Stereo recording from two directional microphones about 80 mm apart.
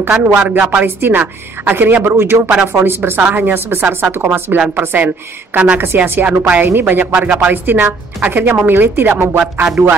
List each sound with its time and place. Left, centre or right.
0.3 s a woman's voice: centre
9.4 s music: centre